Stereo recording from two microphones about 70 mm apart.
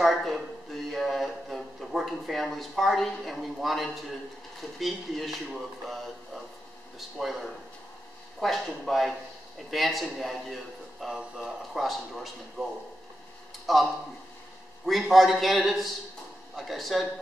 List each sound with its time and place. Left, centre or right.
0.0 s a sound: centre
0.8 s a man's voice: centre
13.7 s speech: centre
14.9 s speech: centre